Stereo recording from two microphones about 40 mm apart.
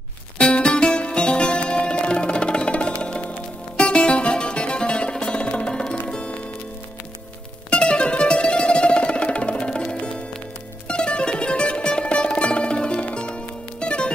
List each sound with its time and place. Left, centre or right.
0.4 s music: left
7.7 s music: left